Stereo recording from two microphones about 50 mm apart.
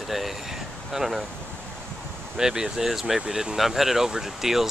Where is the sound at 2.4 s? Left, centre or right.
Centre.